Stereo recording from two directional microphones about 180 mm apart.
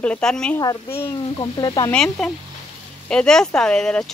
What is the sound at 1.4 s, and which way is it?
Speech, 20° left (ahead or behind).